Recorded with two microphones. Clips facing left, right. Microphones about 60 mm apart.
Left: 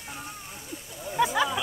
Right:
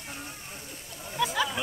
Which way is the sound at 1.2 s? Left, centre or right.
Centre.